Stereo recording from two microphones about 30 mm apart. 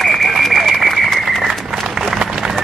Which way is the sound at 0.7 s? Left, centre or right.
Centre.